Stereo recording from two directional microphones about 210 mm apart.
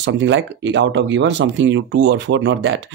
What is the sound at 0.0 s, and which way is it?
Speech, 60° right (ahead or behind).